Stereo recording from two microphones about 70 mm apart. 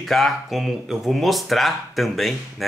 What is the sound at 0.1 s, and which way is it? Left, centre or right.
Speech, centre.